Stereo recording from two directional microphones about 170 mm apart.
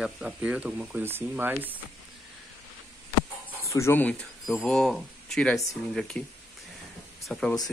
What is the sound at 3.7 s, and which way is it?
Speech, 15° left (ahead or behind).